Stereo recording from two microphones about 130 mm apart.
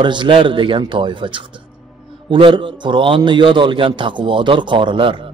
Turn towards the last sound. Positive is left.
turn(degrees=-40)  # may be behind; listen again after turning